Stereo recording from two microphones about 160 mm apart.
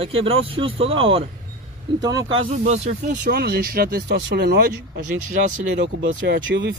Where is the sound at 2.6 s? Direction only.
40° right (ahead or behind).